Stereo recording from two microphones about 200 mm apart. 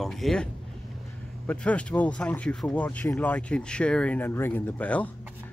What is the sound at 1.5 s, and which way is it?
Speech, 5° left (ahead or behind).